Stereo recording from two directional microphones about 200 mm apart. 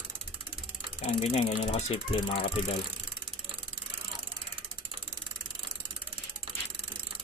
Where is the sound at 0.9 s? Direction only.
30° left (ahead or behind).